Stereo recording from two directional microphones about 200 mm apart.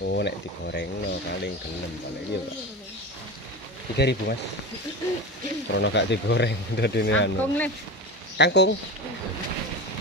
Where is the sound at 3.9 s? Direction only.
55° left (ahead or behind).